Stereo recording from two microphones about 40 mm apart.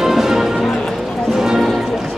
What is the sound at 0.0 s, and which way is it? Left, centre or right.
Music, centre.